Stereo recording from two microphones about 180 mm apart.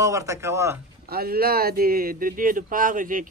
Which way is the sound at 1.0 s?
55° right (ahead or behind).